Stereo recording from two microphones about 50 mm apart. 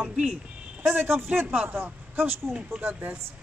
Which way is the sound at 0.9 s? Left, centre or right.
Right.